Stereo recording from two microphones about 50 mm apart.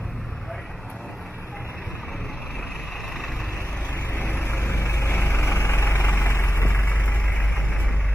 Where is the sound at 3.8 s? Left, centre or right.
Left.